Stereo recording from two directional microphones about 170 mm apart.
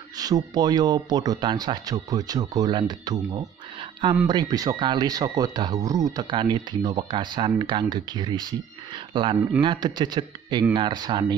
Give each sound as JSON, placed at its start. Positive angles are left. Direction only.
{"t": 0.2, "sound": "speech", "side_deg": -25}